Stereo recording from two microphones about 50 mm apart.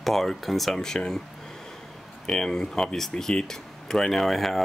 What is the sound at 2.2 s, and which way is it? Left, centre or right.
Speech, centre.